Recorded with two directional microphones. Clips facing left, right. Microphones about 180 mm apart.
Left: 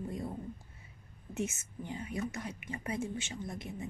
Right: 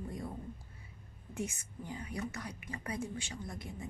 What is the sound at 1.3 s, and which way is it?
A woman's voice, 25° left (ahead or behind).